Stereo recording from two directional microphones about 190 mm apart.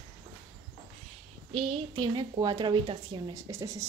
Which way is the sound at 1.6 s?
25° right (ahead or behind).